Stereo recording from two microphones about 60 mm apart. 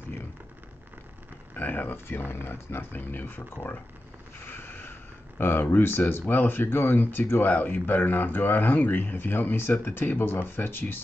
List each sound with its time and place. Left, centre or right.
1.5 s speech: left
4.5 s vehicle: left
5.4 s speech: left